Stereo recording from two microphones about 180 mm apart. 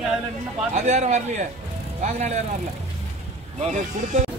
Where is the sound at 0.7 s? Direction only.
40° right (ahead or behind).